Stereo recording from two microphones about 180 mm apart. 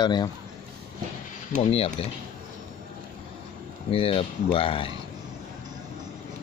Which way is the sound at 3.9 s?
30° left (ahead or behind).